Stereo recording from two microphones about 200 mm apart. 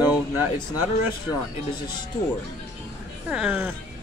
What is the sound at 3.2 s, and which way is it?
Speech, 5° right (ahead or behind).